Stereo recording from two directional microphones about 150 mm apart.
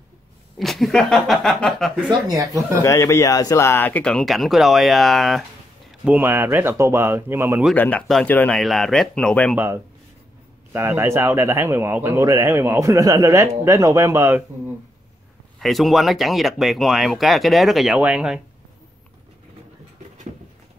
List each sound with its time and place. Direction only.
0.6 s speech: centre (ahead or behind)
2.0 s speech: 25° right (ahead or behind)
2.8 s speech: 20° left (ahead or behind); by 5.4 s centre (ahead or behind)
5.9 s speech: 10° right (ahead or behind)
7.7 s speech: 10° left (ahead or behind)
10.7 s speech: 15° right (ahead or behind)
15.6 s speech: centre (ahead or behind)